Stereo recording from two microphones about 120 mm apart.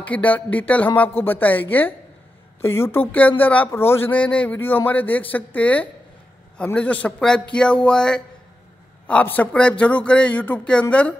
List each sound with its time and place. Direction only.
0.0 s speech: 10° left (ahead or behind)